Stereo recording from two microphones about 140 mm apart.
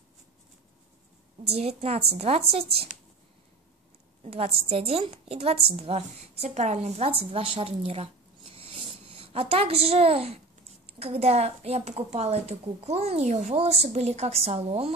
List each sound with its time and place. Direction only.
1.5 s a woman's voice: 45° right (ahead or behind)
4.2 s a sound: 45° right (ahead or behind)
4.6 s a woman's voice: 45° right (ahead or behind)